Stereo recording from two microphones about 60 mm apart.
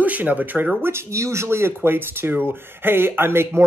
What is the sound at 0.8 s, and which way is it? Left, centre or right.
Speech, right.